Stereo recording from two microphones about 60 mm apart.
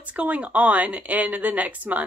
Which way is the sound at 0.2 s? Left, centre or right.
Right.